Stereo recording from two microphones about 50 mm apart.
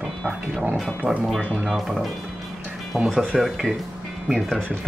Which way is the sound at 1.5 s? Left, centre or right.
Centre.